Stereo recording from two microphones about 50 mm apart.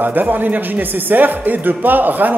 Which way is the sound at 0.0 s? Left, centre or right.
Right.